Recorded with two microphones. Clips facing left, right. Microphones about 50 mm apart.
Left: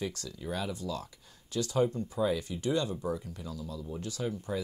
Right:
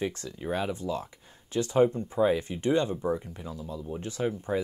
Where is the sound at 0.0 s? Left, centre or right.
Right.